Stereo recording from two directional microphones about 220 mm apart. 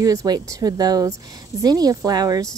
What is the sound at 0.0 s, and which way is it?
Speech, 15° right (ahead or behind).